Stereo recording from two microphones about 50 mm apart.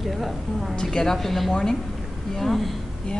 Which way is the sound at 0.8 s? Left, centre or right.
Centre.